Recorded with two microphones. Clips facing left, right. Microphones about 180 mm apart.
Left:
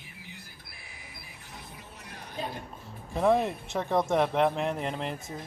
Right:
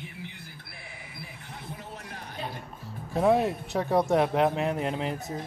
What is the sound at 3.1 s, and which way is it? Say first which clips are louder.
Speech: right 2 dB; 5° right (ahead or behind).